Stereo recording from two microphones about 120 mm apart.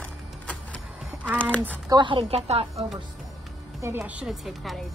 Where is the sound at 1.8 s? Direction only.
40° right (ahead or behind).